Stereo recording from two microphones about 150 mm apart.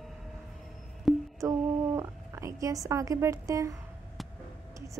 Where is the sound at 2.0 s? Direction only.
20° right (ahead or behind).